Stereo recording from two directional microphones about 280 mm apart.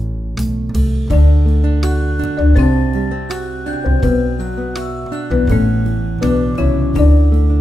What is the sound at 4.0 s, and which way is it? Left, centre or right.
Music, centre.